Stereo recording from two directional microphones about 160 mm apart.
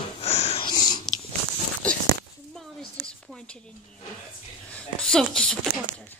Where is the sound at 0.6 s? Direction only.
25° left (ahead or behind).